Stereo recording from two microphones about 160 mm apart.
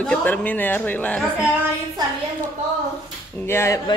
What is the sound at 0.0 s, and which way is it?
A woman's voice, 5° left (ahead or behind).